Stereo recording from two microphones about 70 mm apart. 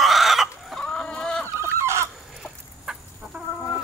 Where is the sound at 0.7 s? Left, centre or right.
Centre.